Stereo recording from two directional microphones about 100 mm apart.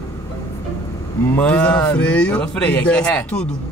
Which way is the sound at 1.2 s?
15° left (ahead or behind).